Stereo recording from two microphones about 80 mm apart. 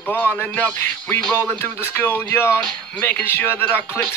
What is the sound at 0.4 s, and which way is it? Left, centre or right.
Speech, left.